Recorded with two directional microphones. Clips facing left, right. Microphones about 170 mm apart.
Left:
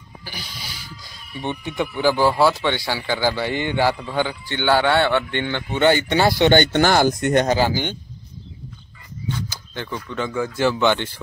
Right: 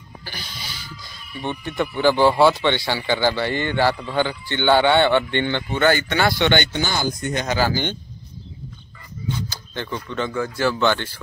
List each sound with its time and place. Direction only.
0.2 s speech: 10° left (ahead or behind)
5.7 s speech: 25° left (ahead or behind)
6.7 s speech: 70° left (ahead or behind)
7.7 s speech: 10° left (ahead or behind)
9.8 s speech: 5° left (ahead or behind)